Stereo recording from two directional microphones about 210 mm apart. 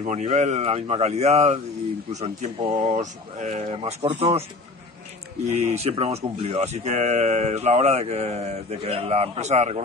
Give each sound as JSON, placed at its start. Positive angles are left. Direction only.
{"t": 0.0, "sound": "speech", "side_deg": -30}
{"t": 3.0, "sound": "speech", "side_deg": -35}